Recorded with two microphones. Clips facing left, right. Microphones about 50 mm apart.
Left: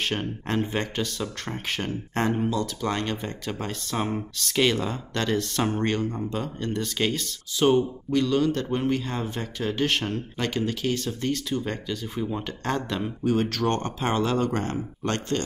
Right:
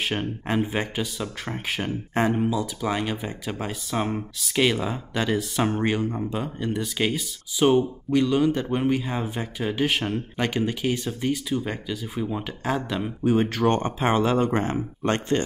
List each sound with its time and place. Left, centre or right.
0.0 s speech: centre
13.2 s speech: centre